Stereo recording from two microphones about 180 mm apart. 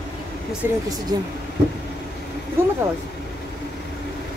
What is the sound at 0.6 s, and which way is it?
Speech, 15° right (ahead or behind).